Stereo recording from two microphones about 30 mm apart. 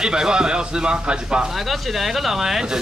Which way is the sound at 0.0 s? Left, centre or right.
Right.